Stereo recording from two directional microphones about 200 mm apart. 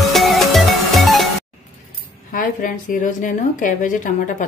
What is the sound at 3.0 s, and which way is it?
A woman's voice, 40° left (ahead or behind).